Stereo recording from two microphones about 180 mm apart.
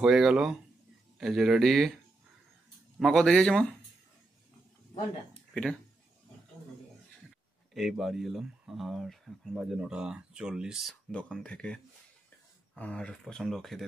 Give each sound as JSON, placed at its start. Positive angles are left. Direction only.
{"t": 0.0, "sound": "speech", "side_deg": -5}
{"t": 3.0, "sound": "speech", "side_deg": 0}
{"t": 5.5, "sound": "speech", "side_deg": 5}
{"t": 7.7, "sound": "speech", "side_deg": 0}